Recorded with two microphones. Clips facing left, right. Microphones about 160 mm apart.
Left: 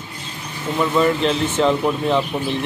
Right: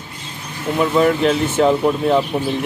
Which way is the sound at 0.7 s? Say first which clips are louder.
Right 2 dB; 5° right (ahead or behind).